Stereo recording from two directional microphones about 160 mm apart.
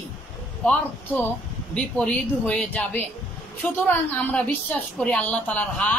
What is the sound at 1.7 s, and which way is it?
A woman's voice, 5° left (ahead or behind).